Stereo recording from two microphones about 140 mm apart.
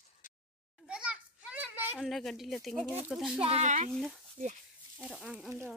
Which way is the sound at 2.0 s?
Centre (ahead or behind).